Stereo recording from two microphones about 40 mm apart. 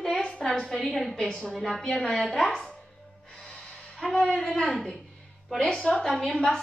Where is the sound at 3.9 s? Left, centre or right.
Centre.